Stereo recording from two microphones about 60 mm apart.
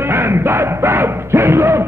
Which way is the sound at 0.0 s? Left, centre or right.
Right.